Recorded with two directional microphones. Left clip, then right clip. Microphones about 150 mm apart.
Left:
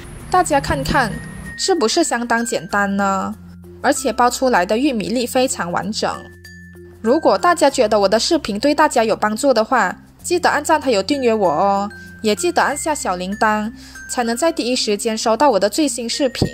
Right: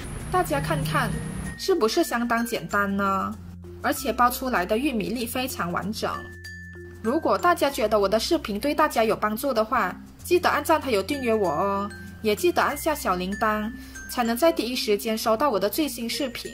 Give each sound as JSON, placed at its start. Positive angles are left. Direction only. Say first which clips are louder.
{"t": 0.3, "sound": "speech", "louder": "left 9 dB", "side_deg": 50}